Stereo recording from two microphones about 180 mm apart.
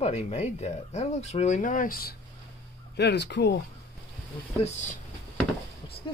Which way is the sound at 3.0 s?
70° left (ahead or behind).